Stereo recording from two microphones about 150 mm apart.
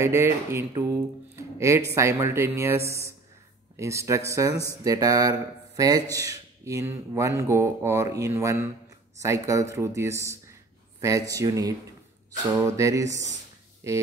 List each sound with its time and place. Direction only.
0.0 s speech: 20° right (ahead or behind)
13.8 s music: 20° right (ahead or behind)